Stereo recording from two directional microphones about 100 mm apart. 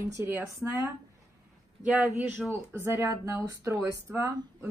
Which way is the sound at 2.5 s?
25° right (ahead or behind).